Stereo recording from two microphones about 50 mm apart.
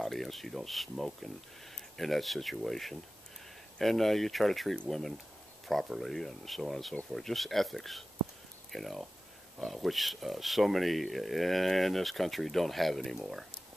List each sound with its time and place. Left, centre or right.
0.0 s speech: centre